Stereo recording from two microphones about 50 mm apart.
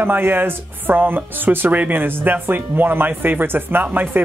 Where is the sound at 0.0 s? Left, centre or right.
Right.